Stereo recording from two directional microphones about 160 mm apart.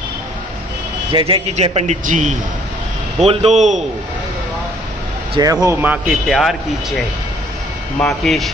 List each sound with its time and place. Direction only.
1.1 s a man's voice: 35° right (ahead or behind)
5.4 s a man's voice: 20° right (ahead or behind); by 6.5 s centre (ahead or behind)
8.0 s speech: centre (ahead or behind)